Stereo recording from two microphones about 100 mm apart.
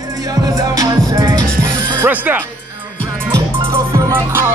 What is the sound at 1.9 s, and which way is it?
Speech, 20° right (ahead or behind).